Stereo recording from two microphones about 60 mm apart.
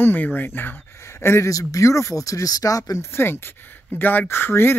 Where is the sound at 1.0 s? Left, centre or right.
Left.